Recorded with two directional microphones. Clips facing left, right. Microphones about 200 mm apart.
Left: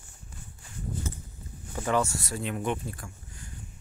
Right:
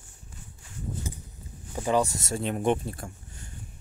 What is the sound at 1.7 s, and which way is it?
Speech, 15° right (ahead or behind).